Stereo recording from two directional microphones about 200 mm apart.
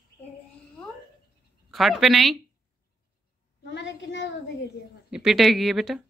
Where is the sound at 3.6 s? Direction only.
65° left (ahead or behind).